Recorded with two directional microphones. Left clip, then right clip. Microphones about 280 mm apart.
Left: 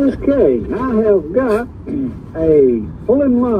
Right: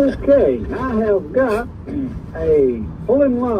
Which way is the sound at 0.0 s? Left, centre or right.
Left.